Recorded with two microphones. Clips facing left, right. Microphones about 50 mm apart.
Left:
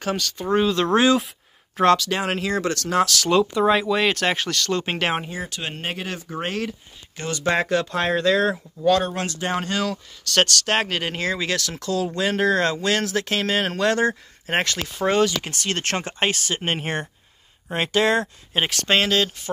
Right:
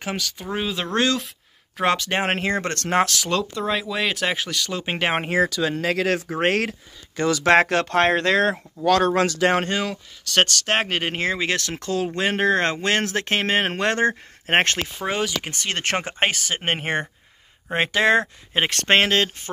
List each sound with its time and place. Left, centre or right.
0.0 s speech: centre
0.9 s speech: centre
2.0 s speech: right
3.3 s speech: centre
5.2 s speech: right
9.7 s speech: right
14.4 s speech: right
15.0 s speech: centre
18.5 s speech: right